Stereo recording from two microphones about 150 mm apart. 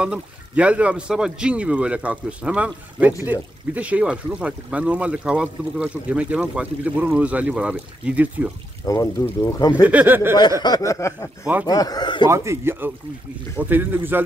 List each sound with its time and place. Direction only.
0.0 s speech: 10° right (ahead or behind)
8.8 s speech: 20° left (ahead or behind)
9.8 s speech: 10° right (ahead or behind)
10.6 s speech: 25° left (ahead or behind)
12.3 s speech: 15° right (ahead or behind)